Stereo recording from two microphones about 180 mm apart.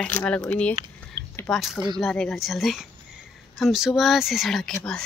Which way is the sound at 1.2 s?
25° right (ahead or behind).